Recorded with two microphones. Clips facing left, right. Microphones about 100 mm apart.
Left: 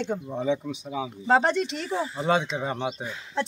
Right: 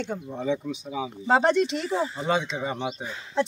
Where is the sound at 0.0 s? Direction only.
10° left (ahead or behind).